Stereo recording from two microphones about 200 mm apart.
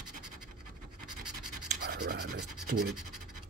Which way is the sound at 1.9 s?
50° right (ahead or behind).